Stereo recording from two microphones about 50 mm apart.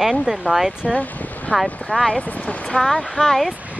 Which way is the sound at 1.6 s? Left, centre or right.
Left.